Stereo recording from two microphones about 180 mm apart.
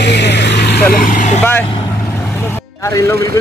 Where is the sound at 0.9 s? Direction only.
50° left (ahead or behind).